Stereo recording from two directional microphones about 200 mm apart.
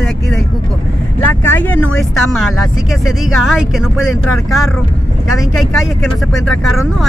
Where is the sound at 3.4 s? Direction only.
Centre (ahead or behind).